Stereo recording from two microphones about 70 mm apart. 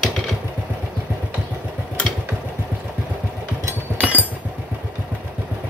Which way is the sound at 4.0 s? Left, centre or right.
Right.